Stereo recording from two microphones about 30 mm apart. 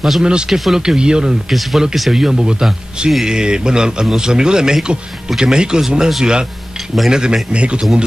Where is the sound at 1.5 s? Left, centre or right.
Centre.